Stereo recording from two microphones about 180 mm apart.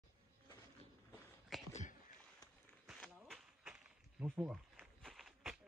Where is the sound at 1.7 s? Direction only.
40° left (ahead or behind).